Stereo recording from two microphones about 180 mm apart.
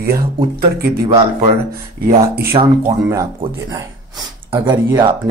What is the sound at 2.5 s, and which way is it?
Speech, 30° right (ahead or behind).